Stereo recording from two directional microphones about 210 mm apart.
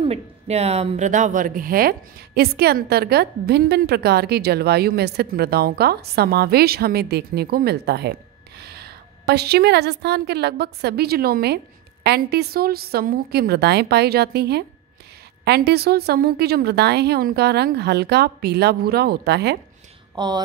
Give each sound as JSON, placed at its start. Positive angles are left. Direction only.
{"t": 0.0, "sound": "speech", "side_deg": -30}
{"t": 20.2, "sound": "speech", "side_deg": -20}